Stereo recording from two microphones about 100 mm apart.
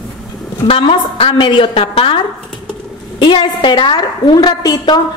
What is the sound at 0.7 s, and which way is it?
A woman's voice, 70° left (ahead or behind).